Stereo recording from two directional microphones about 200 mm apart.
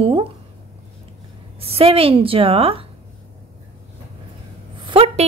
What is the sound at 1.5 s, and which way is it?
A woman's voice, 30° right (ahead or behind).